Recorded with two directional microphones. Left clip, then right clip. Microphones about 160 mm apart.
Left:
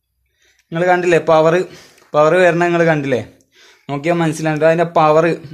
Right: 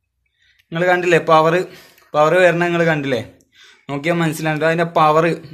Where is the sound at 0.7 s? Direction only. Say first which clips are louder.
Left 2 dB; 25° left (ahead or behind).